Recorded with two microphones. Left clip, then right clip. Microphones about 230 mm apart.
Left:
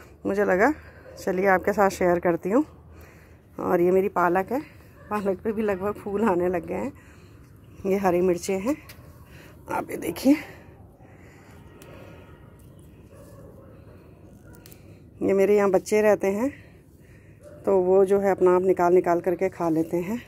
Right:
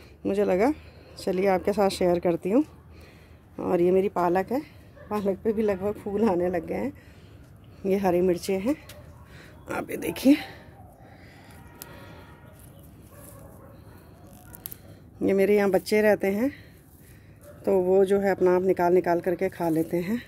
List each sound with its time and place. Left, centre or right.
0.3 s speech: centre
3.5 s a woman's voice: centre
9.4 s a sound: centre
10.3 s speech: centre
15.1 s speech: centre
17.6 s speech: centre
19.1 s speech: centre